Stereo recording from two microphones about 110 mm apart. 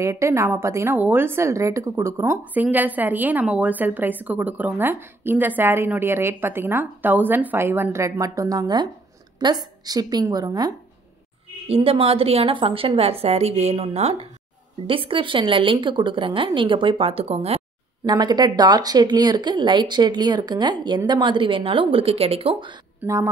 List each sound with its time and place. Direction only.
0.0 s a woman's voice: 25° right (ahead or behind)
11.6 s a woman's voice: 60° right (ahead or behind)
14.9 s speech: 50° right (ahead or behind)
18.0 s speech: 40° right (ahead or behind)
23.0 s speech: 15° right (ahead or behind)